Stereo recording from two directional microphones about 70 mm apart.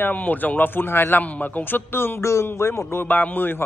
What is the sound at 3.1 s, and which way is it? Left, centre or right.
Speech, left.